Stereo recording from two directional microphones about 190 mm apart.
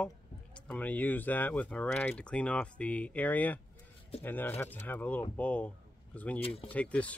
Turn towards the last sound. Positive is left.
turn(degrees=5)  # may be behind; listen again after turning